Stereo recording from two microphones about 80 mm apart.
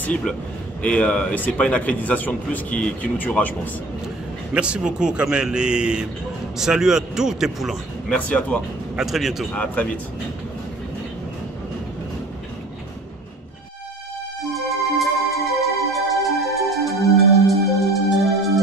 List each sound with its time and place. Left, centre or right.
0.0 s a man's voice: centre
4.6 s a man's voice: centre
8.1 s a man's voice: centre
8.9 s speech: centre
14.5 s music: centre